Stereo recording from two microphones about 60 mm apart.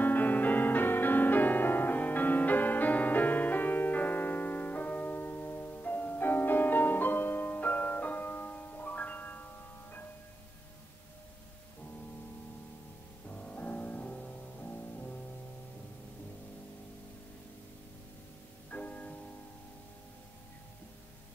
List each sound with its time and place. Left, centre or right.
0.0 s music: left
13.3 s music: left
18.7 s music: left